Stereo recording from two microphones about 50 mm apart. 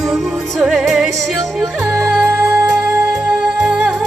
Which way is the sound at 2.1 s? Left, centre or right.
Centre.